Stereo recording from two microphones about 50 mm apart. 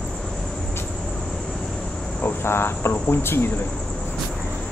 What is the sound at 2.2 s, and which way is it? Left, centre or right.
Cricket, left.